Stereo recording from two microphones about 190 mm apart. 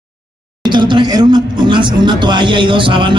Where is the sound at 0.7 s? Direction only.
25° right (ahead or behind).